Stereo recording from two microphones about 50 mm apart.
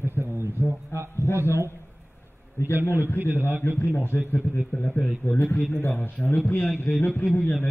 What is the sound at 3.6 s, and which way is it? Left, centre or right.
A man's voice, left.